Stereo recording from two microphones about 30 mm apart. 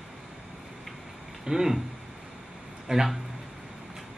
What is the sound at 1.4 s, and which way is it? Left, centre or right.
Speech, centre.